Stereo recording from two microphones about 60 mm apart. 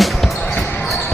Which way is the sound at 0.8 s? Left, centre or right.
Centre.